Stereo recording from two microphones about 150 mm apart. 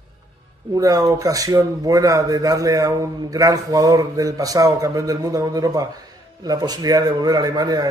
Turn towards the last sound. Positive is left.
turn(degrees=-25)  # may be behind; listen again after turning